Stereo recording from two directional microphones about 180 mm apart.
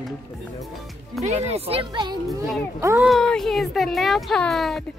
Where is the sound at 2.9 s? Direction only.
Centre (ahead or behind).